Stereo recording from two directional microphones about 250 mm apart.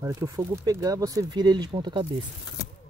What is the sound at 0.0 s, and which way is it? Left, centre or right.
Speech, centre.